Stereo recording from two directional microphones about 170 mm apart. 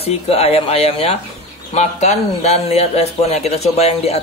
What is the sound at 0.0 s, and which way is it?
Speech, 35° left (ahead or behind).